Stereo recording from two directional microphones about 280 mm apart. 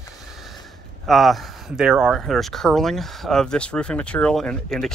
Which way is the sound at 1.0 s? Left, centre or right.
Centre.